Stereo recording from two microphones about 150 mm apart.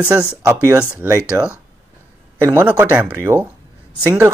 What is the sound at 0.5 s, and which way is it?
Speech, 15° right (ahead or behind).